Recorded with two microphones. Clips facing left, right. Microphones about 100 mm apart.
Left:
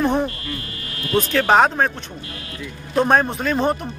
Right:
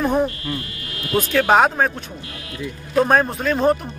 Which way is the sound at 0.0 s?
5° right (ahead or behind).